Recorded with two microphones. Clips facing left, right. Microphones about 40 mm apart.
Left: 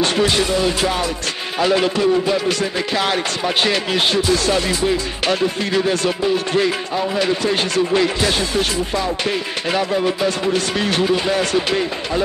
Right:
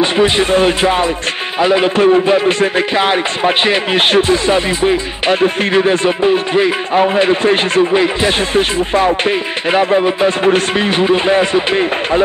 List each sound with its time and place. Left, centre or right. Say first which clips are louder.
0.0 s speech: right 5 dB; right
0.5 s speech: right 6 dB; right
7.9 s speech: right 4 dB; right
8.4 s speech: right 6 dB; right